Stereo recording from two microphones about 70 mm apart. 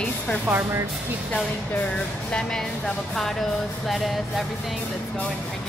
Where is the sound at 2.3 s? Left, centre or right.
Centre.